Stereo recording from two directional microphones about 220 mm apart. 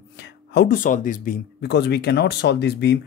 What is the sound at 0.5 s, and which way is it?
Speech, 45° left (ahead or behind).